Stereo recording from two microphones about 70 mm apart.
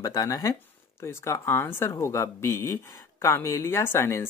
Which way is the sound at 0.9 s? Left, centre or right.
Left.